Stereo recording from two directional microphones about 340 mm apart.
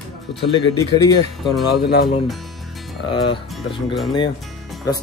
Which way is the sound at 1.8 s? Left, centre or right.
Left.